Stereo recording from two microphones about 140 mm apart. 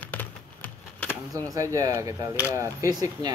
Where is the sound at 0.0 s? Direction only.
10° left (ahead or behind).